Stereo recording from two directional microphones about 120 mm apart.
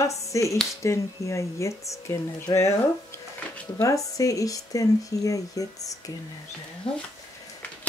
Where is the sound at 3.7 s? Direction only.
25° left (ahead or behind).